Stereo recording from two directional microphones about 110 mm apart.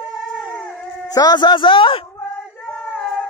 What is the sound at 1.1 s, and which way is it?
Speech, 40° left (ahead or behind).